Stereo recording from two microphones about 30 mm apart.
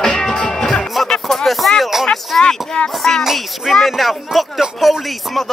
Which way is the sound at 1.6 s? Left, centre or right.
Centre.